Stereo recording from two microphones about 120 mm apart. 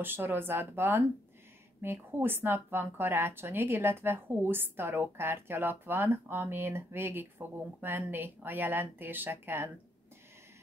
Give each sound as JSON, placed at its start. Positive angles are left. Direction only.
{"t": 0.0, "sound": "speech", "side_deg": -15}